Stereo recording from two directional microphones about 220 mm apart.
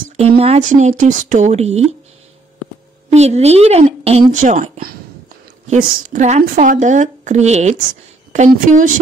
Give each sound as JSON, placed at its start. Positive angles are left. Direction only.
{"t": 0.4, "sound": "a woman's voice", "side_deg": -30}
{"t": 3.1, "sound": "a woman's voice", "side_deg": -30}